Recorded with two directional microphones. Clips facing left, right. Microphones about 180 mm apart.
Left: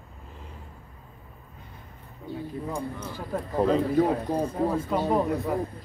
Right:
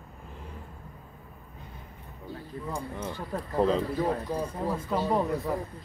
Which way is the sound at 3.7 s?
55° left (ahead or behind).